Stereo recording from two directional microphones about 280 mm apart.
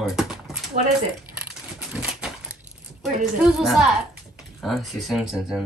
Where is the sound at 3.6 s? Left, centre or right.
Centre.